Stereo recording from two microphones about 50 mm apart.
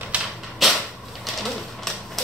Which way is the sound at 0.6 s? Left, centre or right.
Centre.